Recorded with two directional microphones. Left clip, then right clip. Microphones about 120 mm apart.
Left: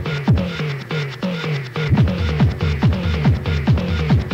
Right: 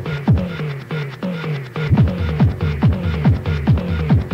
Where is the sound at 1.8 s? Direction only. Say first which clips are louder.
Right 1 dB; 35° right (ahead or behind).